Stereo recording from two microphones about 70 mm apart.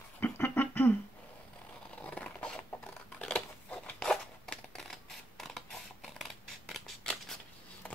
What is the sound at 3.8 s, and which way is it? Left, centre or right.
Zipper, centre.